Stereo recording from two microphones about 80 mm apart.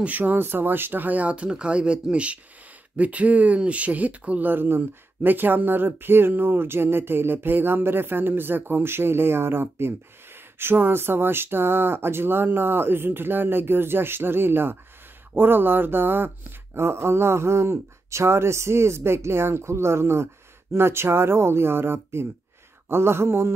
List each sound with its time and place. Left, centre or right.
0.0 s speech: right